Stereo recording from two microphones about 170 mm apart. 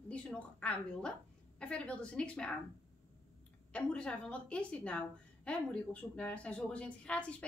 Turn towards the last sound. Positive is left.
turn(degrees=5)  # may be behind; listen again after turning